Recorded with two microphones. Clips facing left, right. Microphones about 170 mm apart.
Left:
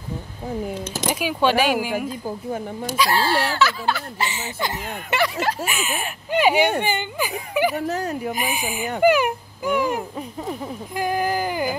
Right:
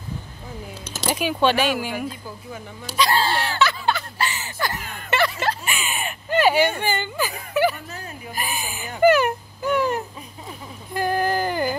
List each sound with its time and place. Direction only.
1.1 s speech: 10° left (ahead or behind)
1.9 s speech: 45° left (ahead or behind)
2.9 s speech: 5° left (ahead or behind)
4.2 s speech: 20° left (ahead or behind)
5.2 s speech: 10° left (ahead or behind)
6.3 s speech: 15° left (ahead or behind)
7.7 s speech: 75° left (ahead or behind)
8.3 s speech: 15° left (ahead or behind)